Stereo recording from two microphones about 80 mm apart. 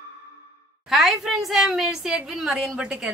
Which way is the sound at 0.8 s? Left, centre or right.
Centre.